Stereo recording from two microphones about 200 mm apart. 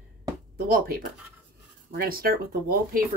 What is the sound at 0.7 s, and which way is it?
Speech, 45° right (ahead or behind).